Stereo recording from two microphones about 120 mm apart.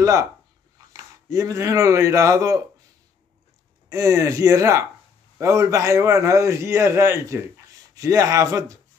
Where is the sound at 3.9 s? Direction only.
25° right (ahead or behind).